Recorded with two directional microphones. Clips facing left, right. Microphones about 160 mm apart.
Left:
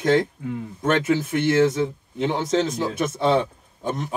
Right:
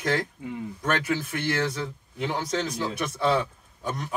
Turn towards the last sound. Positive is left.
turn(degrees=25)  # may be behind; listen again after turning